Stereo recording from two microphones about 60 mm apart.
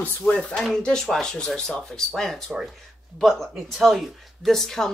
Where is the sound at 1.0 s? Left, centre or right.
Centre.